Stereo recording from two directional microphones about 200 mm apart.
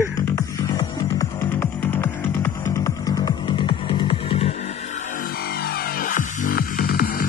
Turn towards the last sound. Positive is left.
turn(degrees=45)  # may be behind; listen again after turning